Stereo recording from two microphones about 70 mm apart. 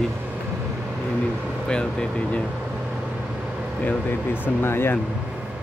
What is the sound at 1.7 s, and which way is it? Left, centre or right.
Speech, centre.